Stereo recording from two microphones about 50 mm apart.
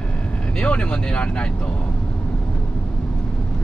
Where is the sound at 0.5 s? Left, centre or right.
Centre.